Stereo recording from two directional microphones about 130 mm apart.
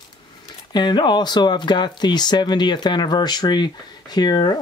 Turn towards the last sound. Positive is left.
turn(degrees=35)  # may be behind; listen again after turning